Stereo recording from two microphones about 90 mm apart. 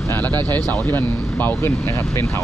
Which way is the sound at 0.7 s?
20° left (ahead or behind).